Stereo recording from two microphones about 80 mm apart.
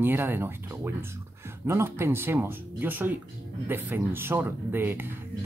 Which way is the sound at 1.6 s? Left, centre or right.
Right.